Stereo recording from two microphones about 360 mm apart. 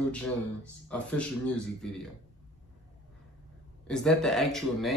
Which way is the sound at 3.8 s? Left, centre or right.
Centre.